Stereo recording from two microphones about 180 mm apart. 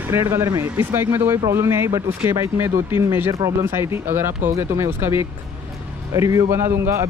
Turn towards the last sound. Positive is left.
turn(degrees=-15)  # may be behind; listen again after turning